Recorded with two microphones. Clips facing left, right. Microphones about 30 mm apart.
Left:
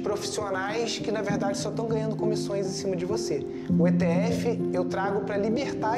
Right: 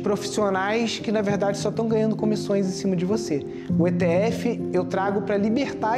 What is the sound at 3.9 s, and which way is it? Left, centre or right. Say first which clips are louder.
Speech: right 4 dB; right.